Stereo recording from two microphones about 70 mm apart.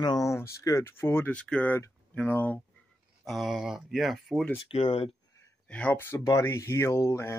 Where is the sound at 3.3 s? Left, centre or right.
Centre.